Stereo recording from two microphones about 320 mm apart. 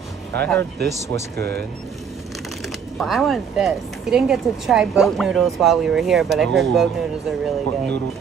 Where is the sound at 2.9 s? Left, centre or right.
Centre.